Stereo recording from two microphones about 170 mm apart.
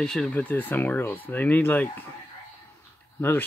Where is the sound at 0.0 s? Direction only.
5° left (ahead or behind).